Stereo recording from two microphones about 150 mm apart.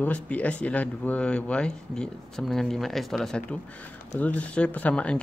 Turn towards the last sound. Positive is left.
turn(degrees=5)  # may be behind; listen again after turning